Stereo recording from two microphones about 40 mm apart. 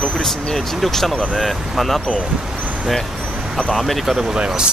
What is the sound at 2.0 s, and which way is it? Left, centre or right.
Speech, left.